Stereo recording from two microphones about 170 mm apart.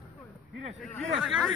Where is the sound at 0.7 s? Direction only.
5° left (ahead or behind).